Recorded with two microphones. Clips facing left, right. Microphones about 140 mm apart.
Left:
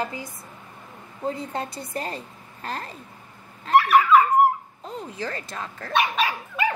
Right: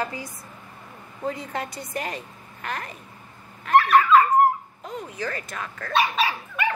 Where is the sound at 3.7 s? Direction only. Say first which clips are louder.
Even; 30° left (ahead or behind).